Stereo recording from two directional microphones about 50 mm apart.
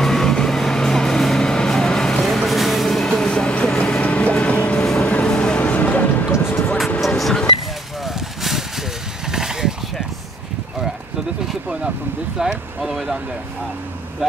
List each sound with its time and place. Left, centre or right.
0.0 s vehicle: centre; by 4.8 s left
5.2 s music: centre
5.6 s music: left
6.3 s music: left
7.2 s vehicle: centre
9.3 s a sound: centre
12.4 s vehicle: centre